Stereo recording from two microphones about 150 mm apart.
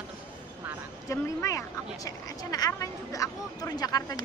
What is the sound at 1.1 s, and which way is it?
Speech, 20° left (ahead or behind).